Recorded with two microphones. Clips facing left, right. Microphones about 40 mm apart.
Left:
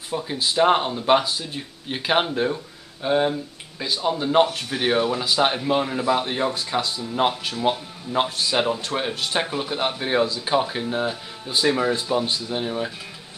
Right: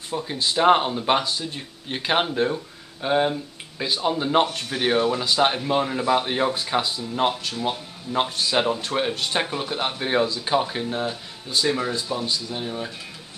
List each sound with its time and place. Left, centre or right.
0.1 s speech: centre
7.0 s speech: centre
7.7 s speech: centre
11.4 s speech: centre